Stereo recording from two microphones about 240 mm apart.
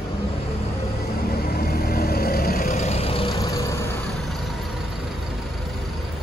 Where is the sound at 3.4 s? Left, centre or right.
Centre.